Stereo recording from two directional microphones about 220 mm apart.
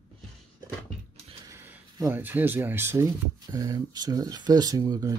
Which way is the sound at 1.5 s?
10° right (ahead or behind).